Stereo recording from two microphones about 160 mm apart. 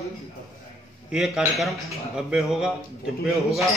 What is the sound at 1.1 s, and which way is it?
A man's voice, centre (ahead or behind).